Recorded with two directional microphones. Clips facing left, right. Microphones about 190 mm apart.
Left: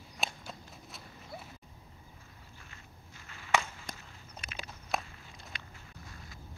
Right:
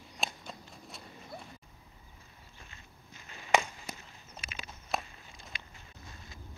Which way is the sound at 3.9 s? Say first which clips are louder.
Right 1 dB; 10° right (ahead or behind).